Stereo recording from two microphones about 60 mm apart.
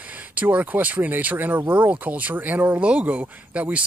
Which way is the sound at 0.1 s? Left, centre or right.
Right.